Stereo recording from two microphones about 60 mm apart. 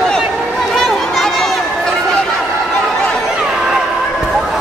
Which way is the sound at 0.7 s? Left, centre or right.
Centre.